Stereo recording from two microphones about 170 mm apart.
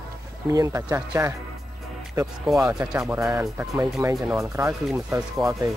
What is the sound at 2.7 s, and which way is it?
Speech, 5° right (ahead or behind).